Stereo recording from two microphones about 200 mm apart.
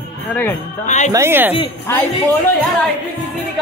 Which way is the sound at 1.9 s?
10° left (ahead or behind).